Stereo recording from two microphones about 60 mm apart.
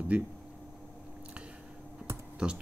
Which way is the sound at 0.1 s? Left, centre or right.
Centre.